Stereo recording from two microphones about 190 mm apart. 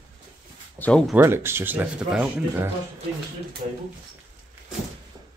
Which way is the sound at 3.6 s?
40° right (ahead or behind).